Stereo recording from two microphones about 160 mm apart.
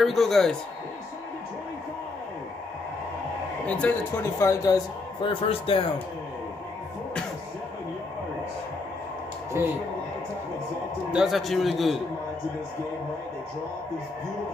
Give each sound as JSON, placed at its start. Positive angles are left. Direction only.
{"t": 0.0, "sound": "a man's voice", "side_deg": 0}
{"t": 3.6, "sound": "speech", "side_deg": 10}
{"t": 5.2, "sound": "speech", "side_deg": 35}
{"t": 11.1, "sound": "a man's voice", "side_deg": -5}